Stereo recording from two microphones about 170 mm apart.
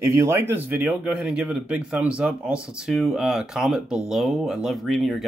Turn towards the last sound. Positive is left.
turn(degrees=0)  # may be behind; listen again after turning